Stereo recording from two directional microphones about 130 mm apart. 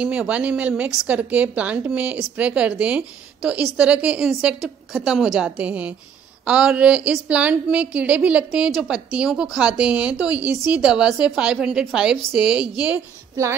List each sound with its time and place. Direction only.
0.0 s a woman's voice: 10° right (ahead or behind)